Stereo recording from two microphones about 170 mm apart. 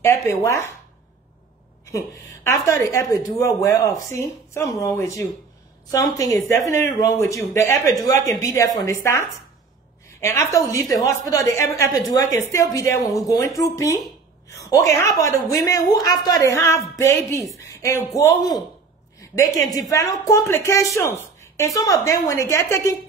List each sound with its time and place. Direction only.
0.0 s speech: 15° left (ahead or behind)
1.9 s a woman's voice: 15° left (ahead or behind)
19.9 s a woman's voice: 20° left (ahead or behind)